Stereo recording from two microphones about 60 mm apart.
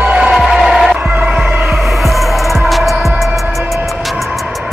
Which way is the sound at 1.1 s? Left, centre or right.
Centre.